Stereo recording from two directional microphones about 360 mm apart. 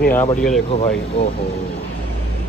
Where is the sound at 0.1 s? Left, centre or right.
Centre.